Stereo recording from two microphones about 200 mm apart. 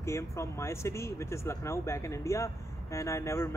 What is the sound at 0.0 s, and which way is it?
Speech, 15° left (ahead or behind).